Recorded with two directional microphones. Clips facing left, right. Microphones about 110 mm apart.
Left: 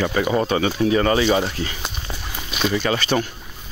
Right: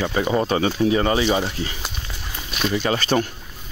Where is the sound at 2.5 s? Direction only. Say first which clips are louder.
Left 2 dB; 5° left (ahead or behind).